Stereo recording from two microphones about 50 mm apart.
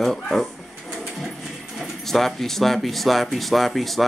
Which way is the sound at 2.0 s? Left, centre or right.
Centre.